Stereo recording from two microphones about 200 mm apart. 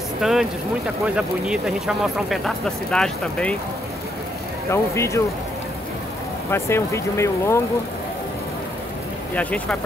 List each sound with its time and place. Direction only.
0.2 s speech: centre (ahead or behind)
4.6 s speech: 15° left (ahead or behind)
6.5 s speech: 15° left (ahead or behind)
9.3 s speech: 5° left (ahead or behind)